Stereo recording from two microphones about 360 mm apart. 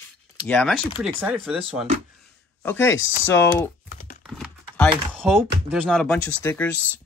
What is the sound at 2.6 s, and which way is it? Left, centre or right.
Speech, centre.